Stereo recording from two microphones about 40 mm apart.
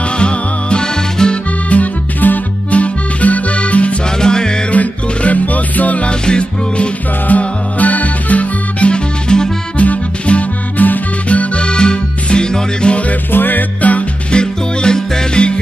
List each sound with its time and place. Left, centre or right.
0.2 s music: left
1.1 s accordion: centre
1.7 s music: left
4.2 s music: centre
4.6 s music: left
6.0 s music: left
7.2 s music: left
9.3 s music: left
9.8 s music: left
13.3 s music: left
14.3 s music: left